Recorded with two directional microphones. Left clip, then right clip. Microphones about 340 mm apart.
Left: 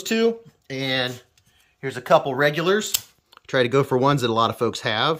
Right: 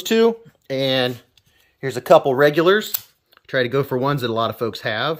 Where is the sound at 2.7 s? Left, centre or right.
Centre.